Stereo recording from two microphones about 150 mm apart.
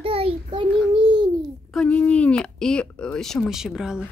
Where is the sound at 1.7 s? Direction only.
10° left (ahead or behind).